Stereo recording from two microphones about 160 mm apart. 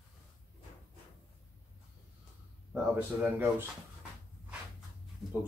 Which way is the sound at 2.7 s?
10° right (ahead or behind).